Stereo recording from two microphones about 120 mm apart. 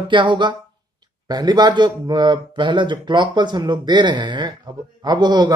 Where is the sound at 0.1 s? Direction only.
40° right (ahead or behind).